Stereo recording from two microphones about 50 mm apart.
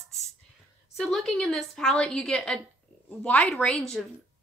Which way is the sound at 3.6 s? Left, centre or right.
Centre.